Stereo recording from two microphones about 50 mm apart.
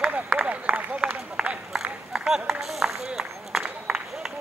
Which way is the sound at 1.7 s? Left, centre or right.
Centre.